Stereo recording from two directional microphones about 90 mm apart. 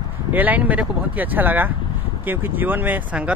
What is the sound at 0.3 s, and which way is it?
Speech, 20° right (ahead or behind).